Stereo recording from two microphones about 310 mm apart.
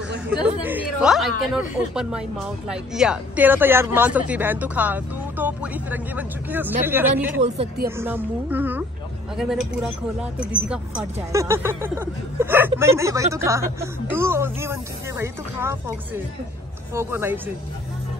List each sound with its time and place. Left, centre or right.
0.6 s a woman's voice: centre
7.4 s speech: right
8.0 s a woman's voice: centre
16.9 s speech: centre